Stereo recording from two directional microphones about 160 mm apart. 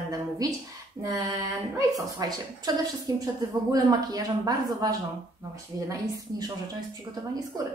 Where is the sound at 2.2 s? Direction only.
25° right (ahead or behind).